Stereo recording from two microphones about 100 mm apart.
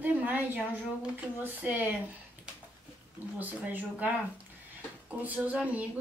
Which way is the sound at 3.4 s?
15° right (ahead or behind).